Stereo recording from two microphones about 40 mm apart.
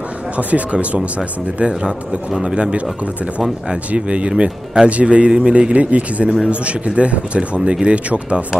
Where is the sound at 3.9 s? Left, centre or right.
Right.